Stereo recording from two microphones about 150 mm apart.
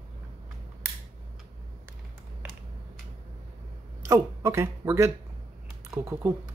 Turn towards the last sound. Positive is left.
turn(degrees=-20)  # may be behind; listen again after turning